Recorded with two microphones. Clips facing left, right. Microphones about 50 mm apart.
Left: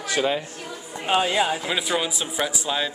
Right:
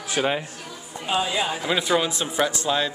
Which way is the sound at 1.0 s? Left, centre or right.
Left.